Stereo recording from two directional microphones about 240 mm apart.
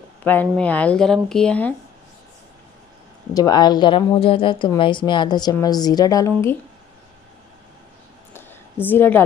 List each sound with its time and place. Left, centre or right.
0.2 s speech: centre
3.3 s a woman's voice: centre
8.3 s a sound: centre